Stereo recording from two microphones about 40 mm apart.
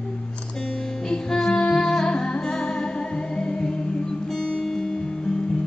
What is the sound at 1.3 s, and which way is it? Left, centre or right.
Music, centre.